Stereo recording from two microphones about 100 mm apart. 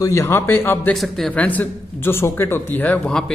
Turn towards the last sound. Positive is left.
turn(degrees=5)  # may be behind; listen again after turning